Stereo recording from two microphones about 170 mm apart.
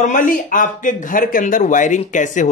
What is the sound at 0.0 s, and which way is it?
A man's voice, 50° left (ahead or behind).